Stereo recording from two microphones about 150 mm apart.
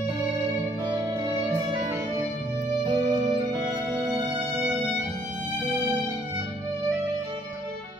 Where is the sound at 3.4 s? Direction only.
25° right (ahead or behind).